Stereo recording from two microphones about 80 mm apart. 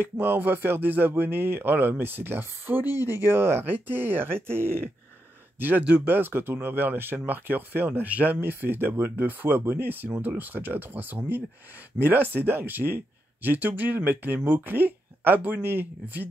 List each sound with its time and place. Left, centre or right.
0.0 s speech: right